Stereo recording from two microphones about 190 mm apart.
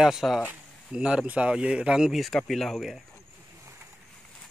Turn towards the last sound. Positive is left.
turn(degrees=0)  # may be behind; listen again after turning